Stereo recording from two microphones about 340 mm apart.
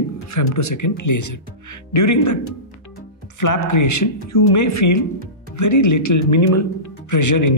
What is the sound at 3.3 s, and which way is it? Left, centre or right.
Speech, left.